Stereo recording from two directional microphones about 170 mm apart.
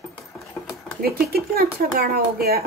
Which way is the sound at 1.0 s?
65° right (ahead or behind).